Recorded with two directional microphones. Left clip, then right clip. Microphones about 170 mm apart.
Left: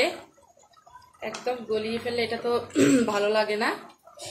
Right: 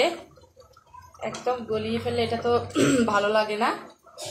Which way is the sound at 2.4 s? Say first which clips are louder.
Even; 25° left (ahead or behind).